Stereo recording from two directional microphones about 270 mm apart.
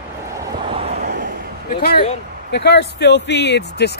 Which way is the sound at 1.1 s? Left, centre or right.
Right.